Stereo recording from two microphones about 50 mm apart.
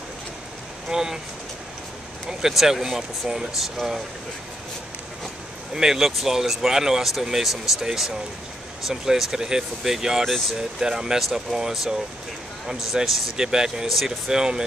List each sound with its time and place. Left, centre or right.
0.8 s speech: centre
2.2 s speech: centre
5.8 s speech: centre